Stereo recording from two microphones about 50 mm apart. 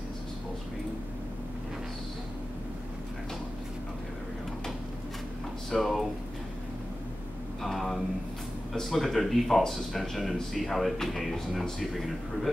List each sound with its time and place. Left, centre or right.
5.7 s speech: centre
7.6 s a sound: centre
8.7 s speech: centre